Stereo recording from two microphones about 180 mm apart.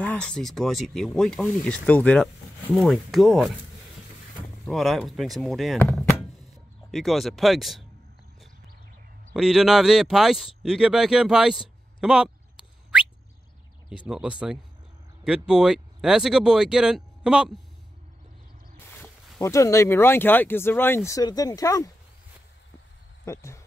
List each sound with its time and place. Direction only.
0.0 s speech: 5° left (ahead or behind)
4.6 s speech: centre (ahead or behind)
9.3 s speech: 5° right (ahead or behind)
12.0 s a sound: 5° right (ahead or behind)
13.8 s speech: 5° right (ahead or behind)
18.9 s speech: 15° left (ahead or behind)
23.2 s speech: 15° left (ahead or behind)